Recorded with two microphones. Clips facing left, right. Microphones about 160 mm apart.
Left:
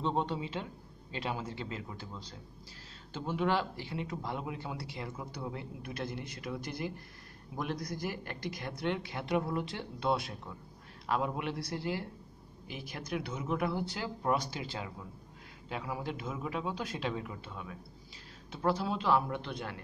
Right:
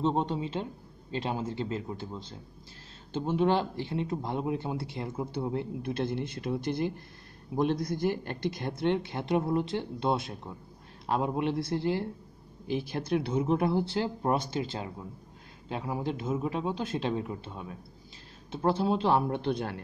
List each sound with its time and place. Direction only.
0.0 s a man's voice: 20° right (ahead or behind)